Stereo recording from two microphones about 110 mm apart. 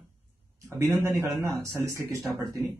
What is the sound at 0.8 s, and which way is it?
A man's voice, 25° right (ahead or behind).